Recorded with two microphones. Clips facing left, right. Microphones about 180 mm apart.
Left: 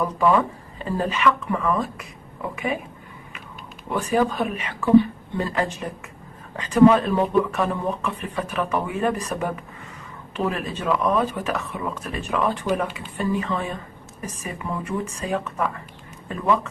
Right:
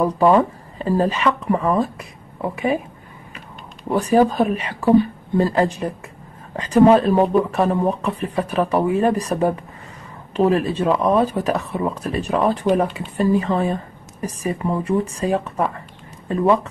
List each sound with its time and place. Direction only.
0.0 s speech: 35° right (ahead or behind)
3.9 s speech: 35° right (ahead or behind)